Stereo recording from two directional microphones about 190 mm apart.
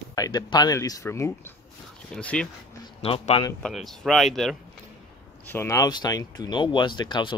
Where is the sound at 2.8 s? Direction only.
30° left (ahead or behind).